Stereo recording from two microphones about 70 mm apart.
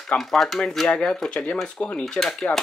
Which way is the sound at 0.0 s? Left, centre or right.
Centre.